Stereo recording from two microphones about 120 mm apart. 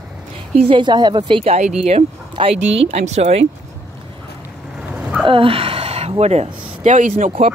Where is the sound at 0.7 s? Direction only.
40° right (ahead or behind).